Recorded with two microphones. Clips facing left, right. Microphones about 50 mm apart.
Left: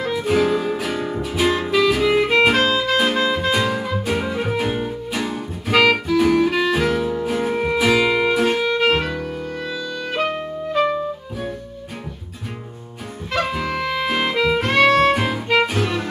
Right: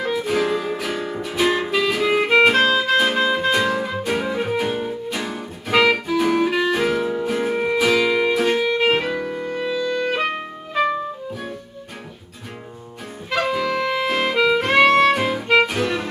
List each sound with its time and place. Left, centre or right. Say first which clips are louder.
0.0 s music: left 2 dB; centre
13.4 s music: right 2 dB; centre
15.1 s music: right 1 dB; centre